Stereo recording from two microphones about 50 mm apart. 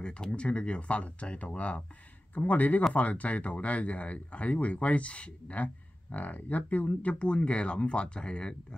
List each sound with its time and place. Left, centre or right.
0.0 s speech: centre